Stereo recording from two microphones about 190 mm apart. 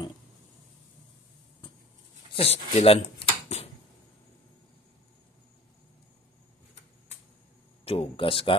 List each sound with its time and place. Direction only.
2.3 s speech: 30° left (ahead or behind)
7.8 s speech: 30° left (ahead or behind)